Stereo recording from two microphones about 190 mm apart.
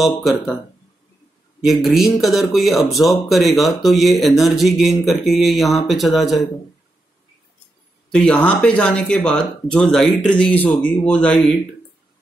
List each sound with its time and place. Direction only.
0.2 s speech: centre (ahead or behind)
1.6 s speech: centre (ahead or behind)
8.1 s speech: 5° left (ahead or behind)